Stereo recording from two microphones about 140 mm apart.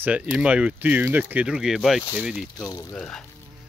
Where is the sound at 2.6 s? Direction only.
25° left (ahead or behind).